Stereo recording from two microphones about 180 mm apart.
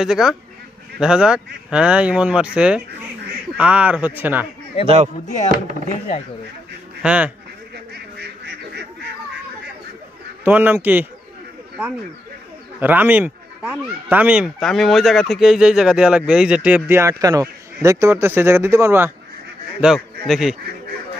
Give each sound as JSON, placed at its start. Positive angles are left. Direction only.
{"t": 0.0, "sound": "speech", "side_deg": -5}
{"t": 4.8, "sound": "a man's voice", "side_deg": -35}
{"t": 7.0, "sound": "speech", "side_deg": -5}
{"t": 7.9, "sound": "goose", "side_deg": -65}
{"t": 10.4, "sound": "speech", "side_deg": -10}
{"t": 12.8, "sound": "speech", "side_deg": -10}
{"t": 19.8, "sound": "speech", "side_deg": 0}